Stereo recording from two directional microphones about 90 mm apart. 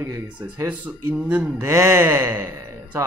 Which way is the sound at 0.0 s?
30° right (ahead or behind).